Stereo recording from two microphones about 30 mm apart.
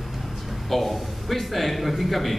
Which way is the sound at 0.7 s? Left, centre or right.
Centre.